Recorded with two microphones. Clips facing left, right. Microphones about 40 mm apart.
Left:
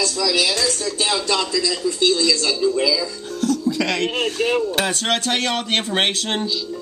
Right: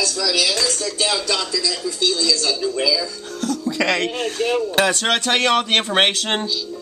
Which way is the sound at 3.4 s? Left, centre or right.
Centre.